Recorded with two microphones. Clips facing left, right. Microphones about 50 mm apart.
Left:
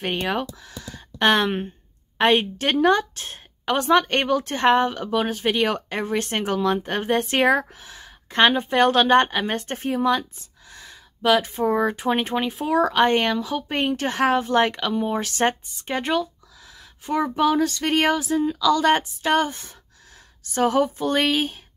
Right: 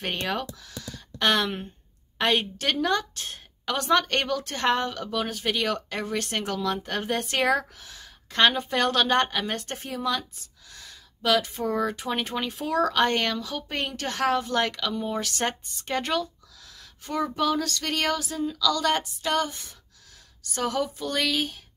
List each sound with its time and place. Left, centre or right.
0.0 s a woman's voice: centre
16.0 s speech: centre; by 21.5 s left